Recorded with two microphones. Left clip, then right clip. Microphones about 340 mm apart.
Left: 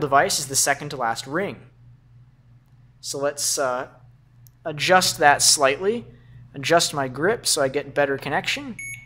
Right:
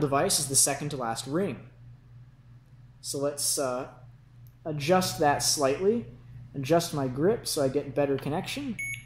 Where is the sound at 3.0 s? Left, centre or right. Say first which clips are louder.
Left 5 dB; left.